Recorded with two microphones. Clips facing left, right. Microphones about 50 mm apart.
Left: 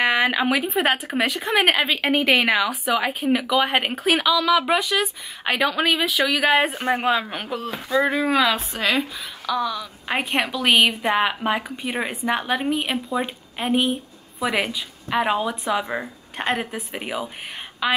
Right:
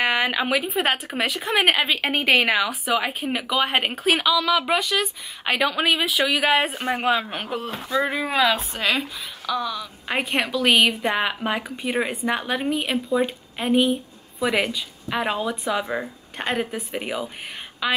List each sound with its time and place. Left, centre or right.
0.0 s speech: centre
7.9 s speech: centre
15.2 s speech: centre